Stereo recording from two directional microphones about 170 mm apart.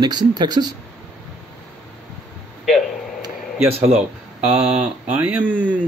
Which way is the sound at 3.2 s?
35° right (ahead or behind).